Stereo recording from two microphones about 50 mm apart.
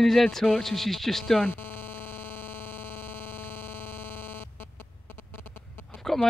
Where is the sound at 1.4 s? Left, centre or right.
Left.